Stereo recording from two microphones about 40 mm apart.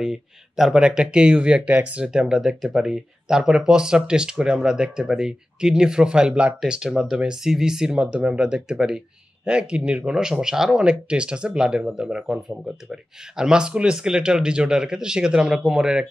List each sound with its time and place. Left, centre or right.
0.0 s speech: centre
1.3 s speech: right
2.0 s speech: centre
6.9 s speech: centre
8.0 s speech: right
10.4 s speech: centre
10.8 s speech: right